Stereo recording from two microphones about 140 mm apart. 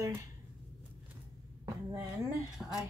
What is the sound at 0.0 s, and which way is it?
Speech, 20° right (ahead or behind).